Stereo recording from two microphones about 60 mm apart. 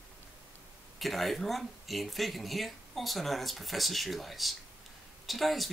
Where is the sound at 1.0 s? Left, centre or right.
Centre.